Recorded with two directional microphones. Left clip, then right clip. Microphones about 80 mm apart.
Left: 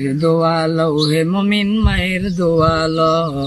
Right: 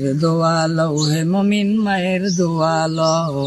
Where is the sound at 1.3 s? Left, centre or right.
Right.